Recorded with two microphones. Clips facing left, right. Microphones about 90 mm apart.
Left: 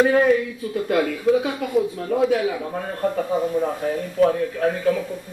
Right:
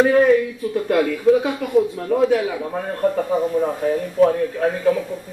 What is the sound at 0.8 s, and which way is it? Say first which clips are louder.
A man's voice: right 3 dB; 45° right (ahead or behind).